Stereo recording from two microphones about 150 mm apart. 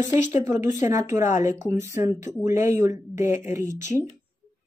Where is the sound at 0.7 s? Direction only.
15° right (ahead or behind).